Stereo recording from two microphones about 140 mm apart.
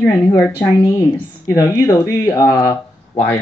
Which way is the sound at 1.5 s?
25° left (ahead or behind).